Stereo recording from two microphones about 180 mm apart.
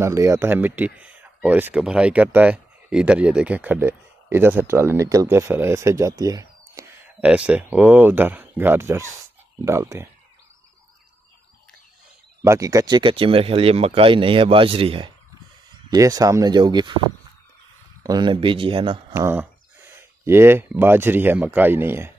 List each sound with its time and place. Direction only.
0.0 s speech: 15° right (ahead or behind)
7.2 s speech: 5° right (ahead or behind)
12.4 s speech: 20° right (ahead or behind)
15.9 s speech: 20° right (ahead or behind)
18.0 s speech: 25° right (ahead or behind)
19.1 s speech: 15° right (ahead or behind)